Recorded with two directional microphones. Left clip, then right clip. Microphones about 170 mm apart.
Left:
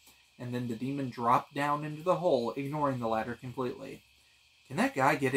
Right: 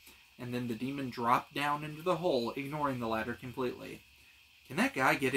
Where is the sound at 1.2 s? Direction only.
20° right (ahead or behind).